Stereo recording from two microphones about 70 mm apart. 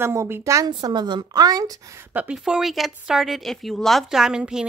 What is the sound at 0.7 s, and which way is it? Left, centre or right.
Speech, right.